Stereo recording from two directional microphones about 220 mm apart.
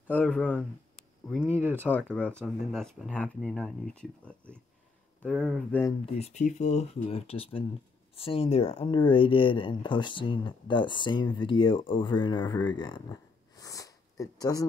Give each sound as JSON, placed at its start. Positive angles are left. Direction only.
{"t": 0.1, "sound": "speech", "side_deg": 5}
{"t": 6.1, "sound": "speech", "side_deg": 30}
{"t": 13.6, "sound": "a sound", "side_deg": 15}